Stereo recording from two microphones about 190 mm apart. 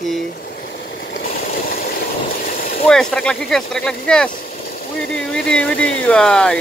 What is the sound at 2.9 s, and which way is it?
Speech, 5° left (ahead or behind).